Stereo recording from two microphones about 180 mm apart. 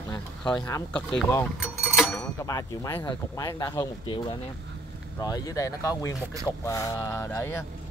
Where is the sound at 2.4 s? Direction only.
20° left (ahead or behind).